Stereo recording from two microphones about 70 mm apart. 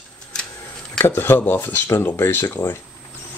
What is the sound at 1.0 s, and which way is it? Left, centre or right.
Speech, left.